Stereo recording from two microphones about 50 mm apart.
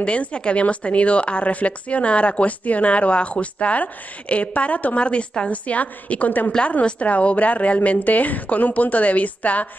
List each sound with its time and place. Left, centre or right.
0.0 s a woman's voice: left